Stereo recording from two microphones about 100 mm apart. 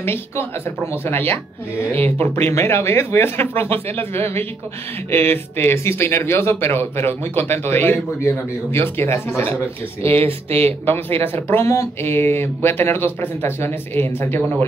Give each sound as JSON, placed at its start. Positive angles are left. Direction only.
{"t": 0.0, "sound": "speech", "side_deg": 25}
{"t": 10.0, "sound": "speech", "side_deg": -75}
{"t": 11.2, "sound": "speech", "side_deg": 25}